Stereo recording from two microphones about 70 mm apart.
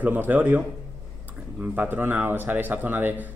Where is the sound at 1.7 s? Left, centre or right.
Right.